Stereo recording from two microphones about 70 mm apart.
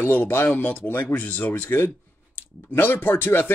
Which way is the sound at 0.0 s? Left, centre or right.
Left.